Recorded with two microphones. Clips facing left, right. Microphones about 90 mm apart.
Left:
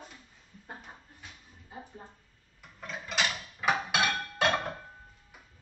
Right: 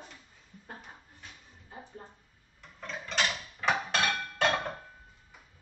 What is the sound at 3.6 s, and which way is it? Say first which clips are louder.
Dishes: left 1 dB; 5° left (ahead or behind).